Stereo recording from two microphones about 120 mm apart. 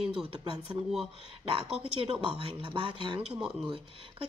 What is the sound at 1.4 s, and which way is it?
Speech, 50° right (ahead or behind).